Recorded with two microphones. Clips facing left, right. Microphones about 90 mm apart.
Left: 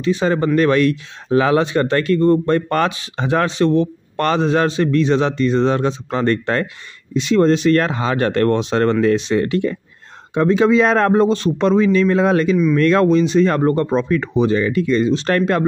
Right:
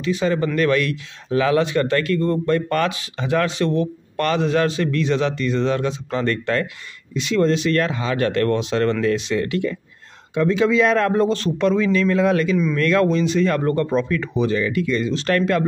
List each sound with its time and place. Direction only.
0.0 s speech: 30° left (ahead or behind)